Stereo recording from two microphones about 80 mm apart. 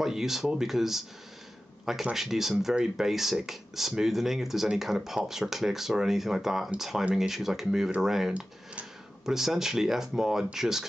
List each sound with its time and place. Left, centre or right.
0.0 s speech: centre
2.1 s speech: centre
8.3 s speech: centre
9.2 s speech: centre